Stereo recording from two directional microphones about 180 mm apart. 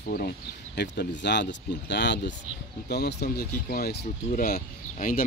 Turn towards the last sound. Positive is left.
turn(degrees=50)  # may be behind; listen again after turning